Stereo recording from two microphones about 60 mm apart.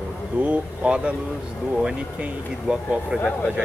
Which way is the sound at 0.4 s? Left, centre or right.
Right.